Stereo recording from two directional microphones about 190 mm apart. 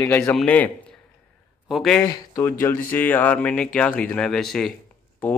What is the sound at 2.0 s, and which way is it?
Speech, 20° left (ahead or behind).